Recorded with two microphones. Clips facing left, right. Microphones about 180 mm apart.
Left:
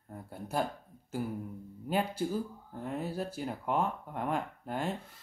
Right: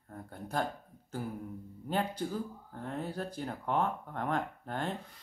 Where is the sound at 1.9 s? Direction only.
10° left (ahead or behind).